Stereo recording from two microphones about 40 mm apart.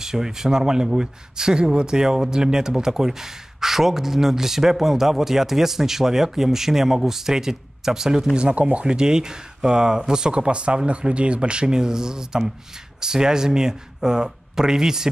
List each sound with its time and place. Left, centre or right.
0.0 s speech: centre
8.4 s speech: right
8.9 s speech: centre